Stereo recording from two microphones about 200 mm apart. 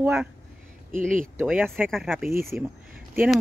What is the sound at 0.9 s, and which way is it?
Speech, 40° right (ahead or behind).